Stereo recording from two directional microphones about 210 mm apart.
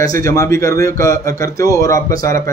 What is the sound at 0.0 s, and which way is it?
Speech, 15° left (ahead or behind).